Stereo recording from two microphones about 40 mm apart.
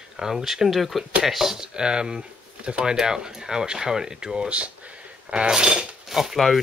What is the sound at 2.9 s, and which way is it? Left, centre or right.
Speech, centre.